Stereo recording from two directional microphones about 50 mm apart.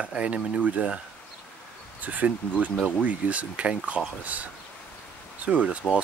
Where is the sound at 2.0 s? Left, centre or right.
Right.